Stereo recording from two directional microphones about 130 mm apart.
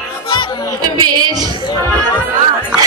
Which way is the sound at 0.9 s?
30° right (ahead or behind).